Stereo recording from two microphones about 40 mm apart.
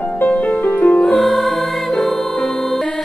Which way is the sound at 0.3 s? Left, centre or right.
Left.